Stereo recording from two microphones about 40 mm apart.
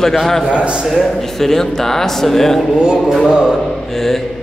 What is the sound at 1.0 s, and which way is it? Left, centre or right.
A man's voice, centre.